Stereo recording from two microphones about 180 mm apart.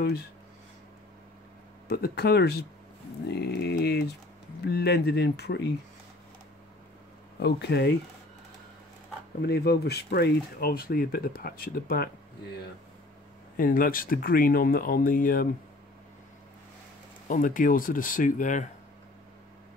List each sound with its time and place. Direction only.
1.9 s speech: 60° left (ahead or behind)
7.3 s speech: 65° left (ahead or behind)
9.4 s speech: 65° left (ahead or behind)
13.6 s speech: 50° left (ahead or behind)
17.3 s speech: 50° left (ahead or behind)